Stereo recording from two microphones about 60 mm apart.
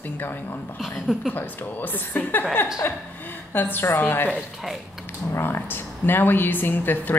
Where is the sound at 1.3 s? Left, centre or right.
Left.